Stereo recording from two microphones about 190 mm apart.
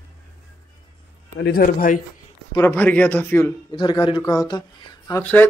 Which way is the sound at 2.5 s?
15° left (ahead or behind).